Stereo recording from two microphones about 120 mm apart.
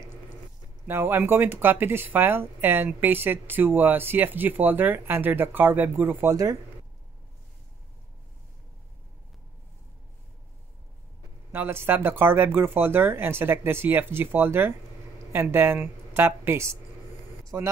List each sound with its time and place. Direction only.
0.8 s speech: 20° right (ahead or behind)
11.5 s speech: 20° right (ahead or behind)